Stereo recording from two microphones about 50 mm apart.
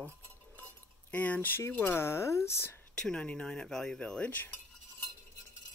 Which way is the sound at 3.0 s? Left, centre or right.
Centre.